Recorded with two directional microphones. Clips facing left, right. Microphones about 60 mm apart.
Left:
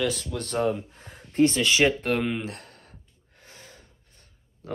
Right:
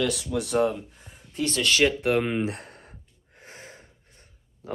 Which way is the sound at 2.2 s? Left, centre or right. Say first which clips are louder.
Right 3 dB; centre.